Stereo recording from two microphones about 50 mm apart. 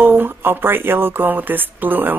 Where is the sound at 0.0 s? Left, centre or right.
Right.